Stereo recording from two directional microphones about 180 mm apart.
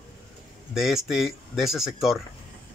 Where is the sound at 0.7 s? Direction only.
Centre (ahead or behind).